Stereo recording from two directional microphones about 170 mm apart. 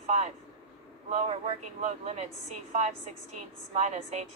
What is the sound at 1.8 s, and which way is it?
A woman's voice, 40° right (ahead or behind).